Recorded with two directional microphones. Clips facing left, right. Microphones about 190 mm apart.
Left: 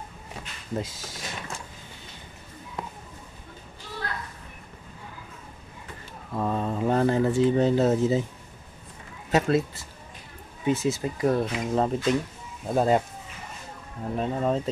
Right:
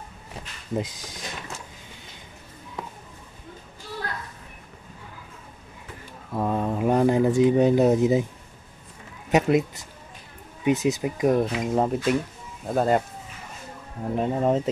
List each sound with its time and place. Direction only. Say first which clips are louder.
0.7 s speech: right 3 dB; 20° right (ahead or behind)
6.3 s speech: right 2 dB; 10° right (ahead or behind)
9.3 s speech: right 2 dB; 15° right (ahead or behind); by 13.0 s centre (ahead or behind)
14.1 s speech: right 3 dB; 20° right (ahead or behind)